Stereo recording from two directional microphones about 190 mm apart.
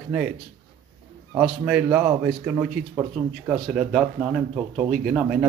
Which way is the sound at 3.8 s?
Centre (ahead or behind).